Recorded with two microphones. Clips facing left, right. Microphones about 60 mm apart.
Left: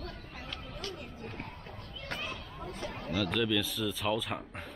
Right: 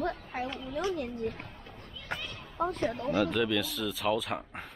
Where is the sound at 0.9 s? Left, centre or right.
Right.